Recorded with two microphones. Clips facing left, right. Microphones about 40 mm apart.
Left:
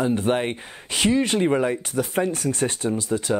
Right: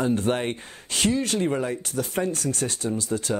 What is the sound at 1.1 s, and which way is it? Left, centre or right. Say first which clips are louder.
Speech: left 7 dB; left.